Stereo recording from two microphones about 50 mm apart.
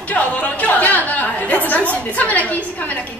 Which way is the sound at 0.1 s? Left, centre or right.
Left.